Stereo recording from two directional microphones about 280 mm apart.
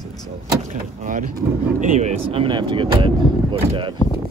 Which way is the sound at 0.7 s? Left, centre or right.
Right.